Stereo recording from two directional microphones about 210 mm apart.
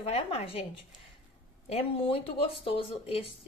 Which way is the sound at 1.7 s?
30° left (ahead or behind).